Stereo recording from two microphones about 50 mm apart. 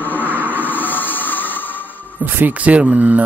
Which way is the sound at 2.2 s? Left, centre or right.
Right.